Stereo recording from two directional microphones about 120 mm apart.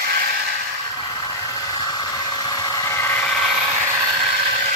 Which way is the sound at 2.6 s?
30° left (ahead or behind).